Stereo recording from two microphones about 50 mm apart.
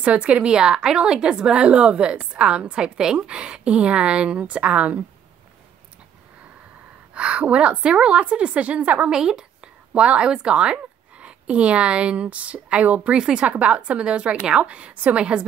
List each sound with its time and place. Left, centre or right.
0.0 s a woman's voice: right
7.2 s a woman's voice: right
9.1 s a woman's voice: centre